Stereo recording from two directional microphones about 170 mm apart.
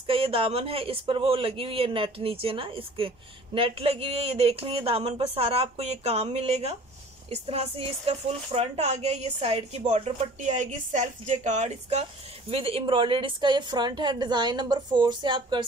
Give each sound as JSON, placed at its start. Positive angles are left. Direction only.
{"t": 0.0, "sound": "speech", "side_deg": -35}